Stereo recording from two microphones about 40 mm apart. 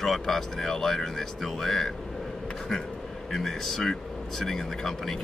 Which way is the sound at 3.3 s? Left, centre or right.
Centre.